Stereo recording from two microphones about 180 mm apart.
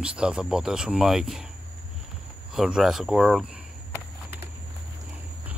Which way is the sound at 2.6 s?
5° right (ahead or behind).